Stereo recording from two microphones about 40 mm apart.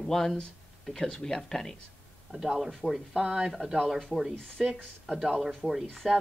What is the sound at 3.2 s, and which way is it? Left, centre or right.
Speech, centre.